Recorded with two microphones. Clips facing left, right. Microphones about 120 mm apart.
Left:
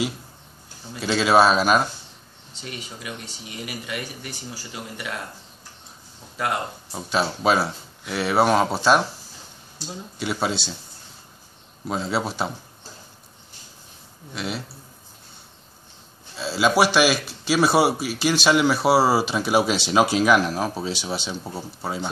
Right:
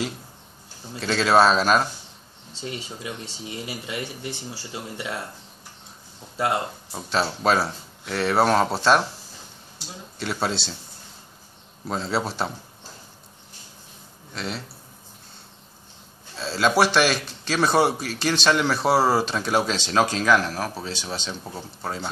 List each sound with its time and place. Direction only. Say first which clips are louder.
0.9 s speech: left 1 dB; 5° left (ahead or behind)
2.6 s speech: right 3 dB; 25° right (ahead or behind)
6.3 s speech: right 2 dB; 25° right (ahead or behind)
6.9 s speech: left 1 dB; 5° left (ahead or behind)
10.1 s speech: left 1 dB; 5° left (ahead or behind)
11.9 s speech: left 1 dB; 5° left (ahead or behind)
14.3 s speech: left 2 dB; 5° left (ahead or behind)
16.3 s speech: left 1 dB; 5° left (ahead or behind)